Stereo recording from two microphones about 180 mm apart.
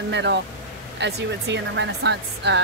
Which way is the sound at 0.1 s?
75° right (ahead or behind).